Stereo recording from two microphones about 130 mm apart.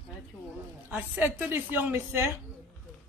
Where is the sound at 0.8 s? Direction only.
10° right (ahead or behind).